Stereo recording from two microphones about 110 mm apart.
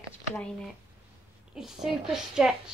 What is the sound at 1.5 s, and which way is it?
A woman's voice, 5° right (ahead or behind).